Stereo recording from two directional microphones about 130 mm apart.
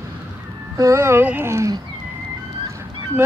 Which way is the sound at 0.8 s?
20° right (ahead or behind).